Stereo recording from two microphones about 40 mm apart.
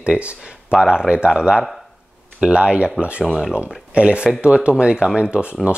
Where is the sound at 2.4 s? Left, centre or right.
Right.